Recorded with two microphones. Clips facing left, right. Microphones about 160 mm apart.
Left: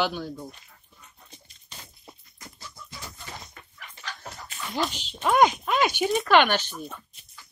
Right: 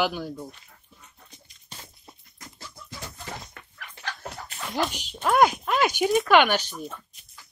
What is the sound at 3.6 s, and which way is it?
Chicken, 60° right (ahead or behind).